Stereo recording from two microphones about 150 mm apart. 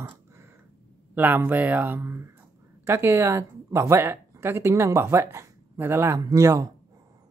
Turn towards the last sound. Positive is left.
turn(degrees=-20)  # may be behind; listen again after turning